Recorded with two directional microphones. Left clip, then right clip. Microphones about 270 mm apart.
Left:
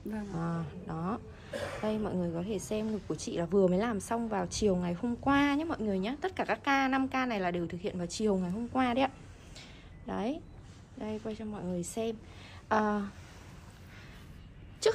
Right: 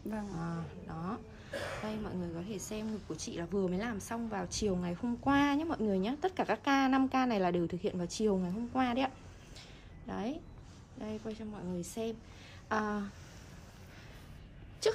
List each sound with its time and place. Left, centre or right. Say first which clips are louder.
0.4 s a woman's voice: left 4 dB; centre
2.8 s a woman's voice: left 5 dB; centre
3.1 s a woman's voice: left 7 dB; centre
14.8 s speech: left 3 dB; centre